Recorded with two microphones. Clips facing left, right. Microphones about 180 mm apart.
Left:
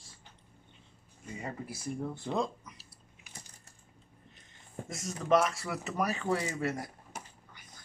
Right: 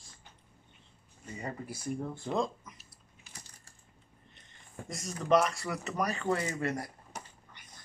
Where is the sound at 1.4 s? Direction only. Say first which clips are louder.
Right 1 dB; centre (ahead or behind).